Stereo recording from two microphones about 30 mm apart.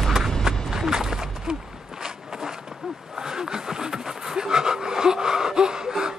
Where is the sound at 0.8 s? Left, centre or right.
Right.